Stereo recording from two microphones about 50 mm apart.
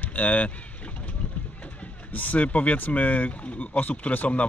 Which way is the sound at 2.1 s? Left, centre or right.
Left.